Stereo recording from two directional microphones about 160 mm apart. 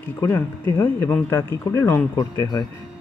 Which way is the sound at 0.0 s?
15° left (ahead or behind).